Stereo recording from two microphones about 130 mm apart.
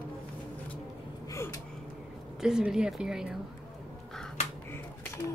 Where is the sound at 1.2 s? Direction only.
25° left (ahead or behind).